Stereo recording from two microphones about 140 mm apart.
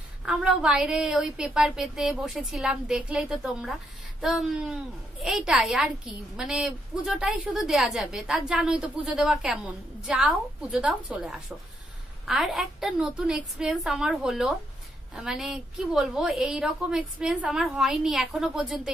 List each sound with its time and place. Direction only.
0.2 s a woman's voice: 5° right (ahead or behind)